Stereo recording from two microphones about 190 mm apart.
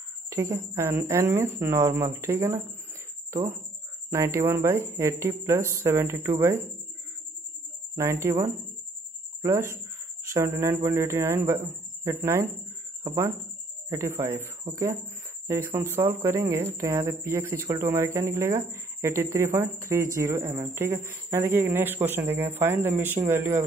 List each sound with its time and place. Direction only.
0.3 s speech: 15° right (ahead or behind)
4.1 s speech: 15° right (ahead or behind)
7.9 s speech: 15° right (ahead or behind)